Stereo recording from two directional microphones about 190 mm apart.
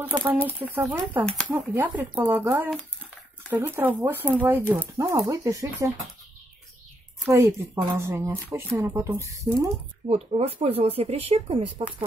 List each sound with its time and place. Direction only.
0.0 s speech: 10° right (ahead or behind)
7.2 s speech: 15° right (ahead or behind)
10.0 s speech: 30° right (ahead or behind)